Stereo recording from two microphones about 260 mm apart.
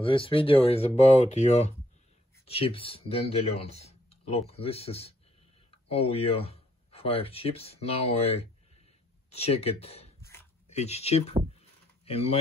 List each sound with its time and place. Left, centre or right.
0.0 s speech: left